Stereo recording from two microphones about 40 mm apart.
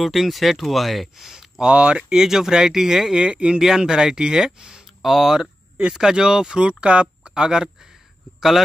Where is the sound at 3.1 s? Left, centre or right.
Right.